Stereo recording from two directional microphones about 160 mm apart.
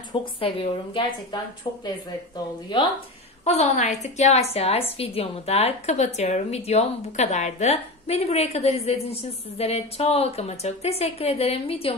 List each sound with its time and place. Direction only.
0.1 s a woman's voice: 35° left (ahead or behind)
2.7 s a woman's voice: 30° left (ahead or behind)
3.4 s a woman's voice: 45° left (ahead or behind)